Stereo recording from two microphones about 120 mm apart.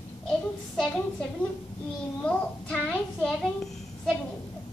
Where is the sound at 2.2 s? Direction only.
10° left (ahead or behind).